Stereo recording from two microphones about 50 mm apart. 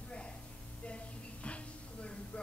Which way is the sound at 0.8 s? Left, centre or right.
Left.